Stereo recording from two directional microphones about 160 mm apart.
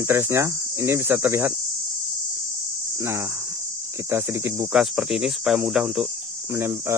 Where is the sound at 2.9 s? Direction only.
15° right (ahead or behind).